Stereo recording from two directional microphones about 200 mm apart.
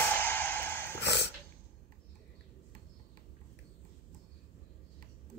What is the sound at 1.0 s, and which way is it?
Dog, 55° left (ahead or behind).